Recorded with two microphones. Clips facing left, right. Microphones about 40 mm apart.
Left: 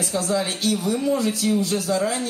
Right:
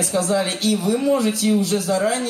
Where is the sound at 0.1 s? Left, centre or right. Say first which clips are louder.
Right 3 dB; centre.